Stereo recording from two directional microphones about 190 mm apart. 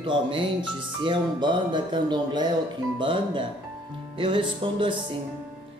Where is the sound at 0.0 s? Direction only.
25° right (ahead or behind).